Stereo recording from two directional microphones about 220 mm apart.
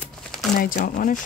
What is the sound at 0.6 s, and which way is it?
Speech, 40° left (ahead or behind).